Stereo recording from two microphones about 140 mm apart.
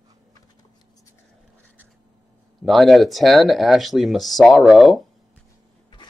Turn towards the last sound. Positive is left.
turn(degrees=0)  # may be behind; listen again after turning